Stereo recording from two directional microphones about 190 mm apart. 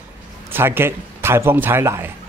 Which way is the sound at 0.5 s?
10° right (ahead or behind).